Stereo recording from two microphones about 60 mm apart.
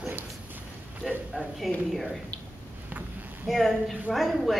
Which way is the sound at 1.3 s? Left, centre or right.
Centre.